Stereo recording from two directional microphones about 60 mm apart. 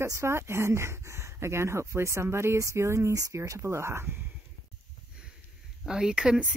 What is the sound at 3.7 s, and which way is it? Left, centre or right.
Speech, right.